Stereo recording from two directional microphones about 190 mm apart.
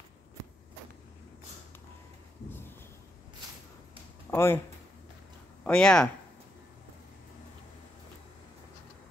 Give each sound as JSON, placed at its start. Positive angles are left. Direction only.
{"t": 4.3, "sound": "speech", "side_deg": 15}
{"t": 5.6, "sound": "speech", "side_deg": 5}